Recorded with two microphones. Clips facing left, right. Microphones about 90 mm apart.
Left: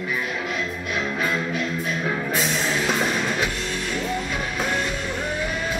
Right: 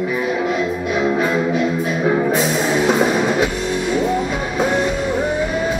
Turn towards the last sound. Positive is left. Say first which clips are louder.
# right 8 dB
turn(degrees=-10)  # may be behind; listen again after turning